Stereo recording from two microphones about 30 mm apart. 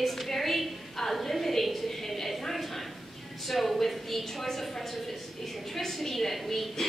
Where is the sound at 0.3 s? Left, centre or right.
Centre.